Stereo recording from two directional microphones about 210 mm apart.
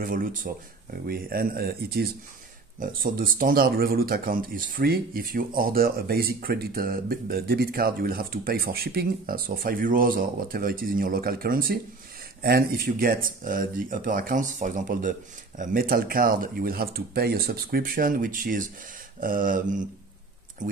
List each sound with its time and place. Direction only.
0.0 s mantra: 40° right (ahead or behind)
1.0 s speech: 45° right (ahead or behind)
19.1 s mantra: 40° right (ahead or behind)
20.6 s speech: 40° right (ahead or behind)